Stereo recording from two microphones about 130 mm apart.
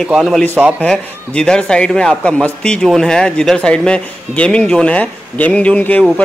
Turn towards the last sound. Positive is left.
turn(degrees=10)  # may be behind; listen again after turning